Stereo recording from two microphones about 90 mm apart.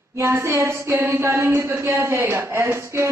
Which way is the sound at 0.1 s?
30° right (ahead or behind).